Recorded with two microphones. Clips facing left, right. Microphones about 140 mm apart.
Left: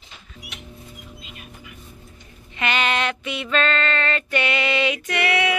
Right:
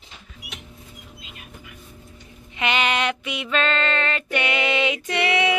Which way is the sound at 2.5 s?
15° right (ahead or behind).